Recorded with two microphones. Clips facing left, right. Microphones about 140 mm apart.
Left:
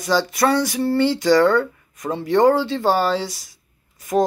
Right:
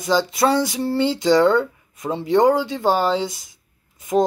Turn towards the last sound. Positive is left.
turn(degrees=-20)  # may be behind; listen again after turning